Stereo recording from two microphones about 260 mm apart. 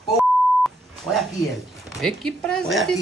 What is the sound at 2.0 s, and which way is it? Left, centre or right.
Speech, centre.